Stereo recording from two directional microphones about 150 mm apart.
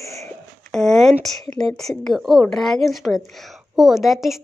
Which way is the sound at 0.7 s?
5° left (ahead or behind).